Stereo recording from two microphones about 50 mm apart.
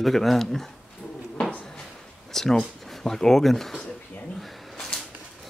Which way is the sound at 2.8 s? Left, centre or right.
Centre.